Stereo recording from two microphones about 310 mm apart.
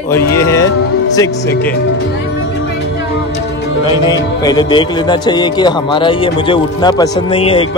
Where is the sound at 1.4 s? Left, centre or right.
Left.